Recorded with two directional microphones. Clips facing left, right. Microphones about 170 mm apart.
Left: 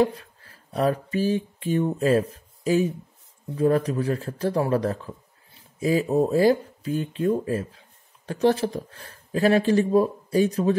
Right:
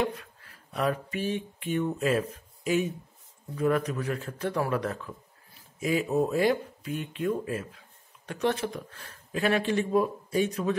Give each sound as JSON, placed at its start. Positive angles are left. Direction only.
{"t": 0.0, "sound": "speech", "side_deg": 35}